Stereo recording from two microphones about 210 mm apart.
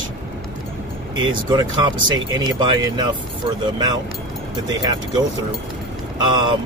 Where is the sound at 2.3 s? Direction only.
20° right (ahead or behind).